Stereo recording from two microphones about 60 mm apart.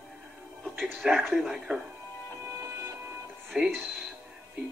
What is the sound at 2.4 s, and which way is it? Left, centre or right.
Music, right.